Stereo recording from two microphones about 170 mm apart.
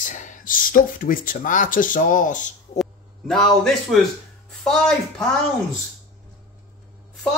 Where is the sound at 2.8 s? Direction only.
Centre (ahead or behind).